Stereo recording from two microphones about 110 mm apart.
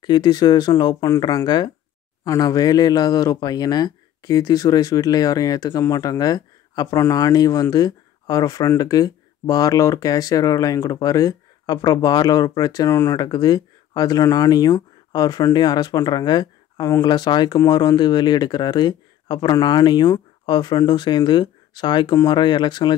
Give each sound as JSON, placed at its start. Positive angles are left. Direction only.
{"t": 0.0, "sound": "speech", "side_deg": 40}
{"t": 12.9, "sound": "speech", "side_deg": 25}
{"t": 13.2, "sound": "speech", "side_deg": 40}